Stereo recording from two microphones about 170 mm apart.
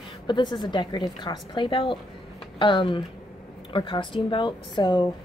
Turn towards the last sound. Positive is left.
turn(degrees=25)  # may be behind; listen again after turning